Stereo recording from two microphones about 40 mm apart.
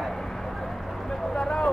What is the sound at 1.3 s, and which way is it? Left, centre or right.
Vehicle, centre.